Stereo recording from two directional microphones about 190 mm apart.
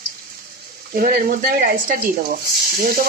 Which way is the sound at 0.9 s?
50° right (ahead or behind).